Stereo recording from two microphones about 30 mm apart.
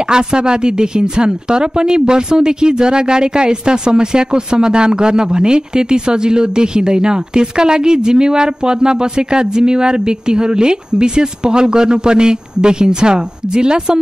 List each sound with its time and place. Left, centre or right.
0.1 s speech: right